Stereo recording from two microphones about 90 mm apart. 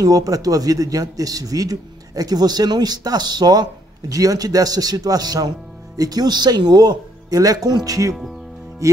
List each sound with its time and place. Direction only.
0.0 s speech: 40° right (ahead or behind)
8.8 s music: 40° right (ahead or behind)